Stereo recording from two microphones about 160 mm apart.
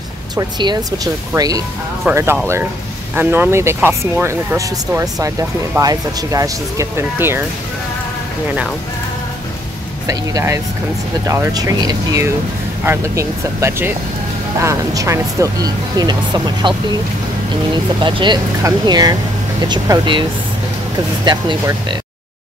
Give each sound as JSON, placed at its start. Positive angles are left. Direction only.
{"t": 0.4, "sound": "speech", "side_deg": -25}
{"t": 2.1, "sound": "speech", "side_deg": -10}
{"t": 10.0, "sound": "speech", "side_deg": -20}
{"t": 18.0, "sound": "speech", "side_deg": -30}